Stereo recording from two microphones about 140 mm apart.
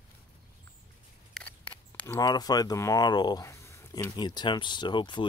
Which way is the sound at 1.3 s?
10° left (ahead or behind).